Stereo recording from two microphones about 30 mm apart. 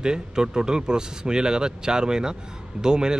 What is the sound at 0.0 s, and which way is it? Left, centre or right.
Speech, right.